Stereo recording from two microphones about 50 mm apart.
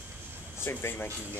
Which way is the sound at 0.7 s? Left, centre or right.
Left.